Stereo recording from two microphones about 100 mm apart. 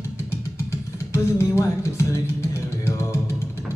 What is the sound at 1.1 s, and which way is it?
Music, 30° left (ahead or behind).